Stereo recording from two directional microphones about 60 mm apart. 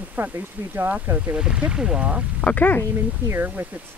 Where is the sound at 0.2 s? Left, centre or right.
Right.